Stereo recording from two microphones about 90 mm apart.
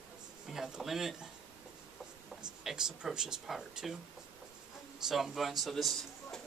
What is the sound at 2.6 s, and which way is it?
Speech, 5° right (ahead or behind).